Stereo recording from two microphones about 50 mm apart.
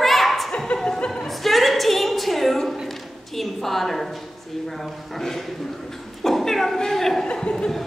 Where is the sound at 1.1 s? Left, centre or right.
Centre.